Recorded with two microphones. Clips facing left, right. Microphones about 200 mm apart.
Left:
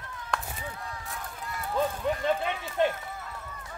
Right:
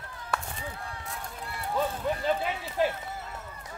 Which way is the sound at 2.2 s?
5° right (ahead or behind).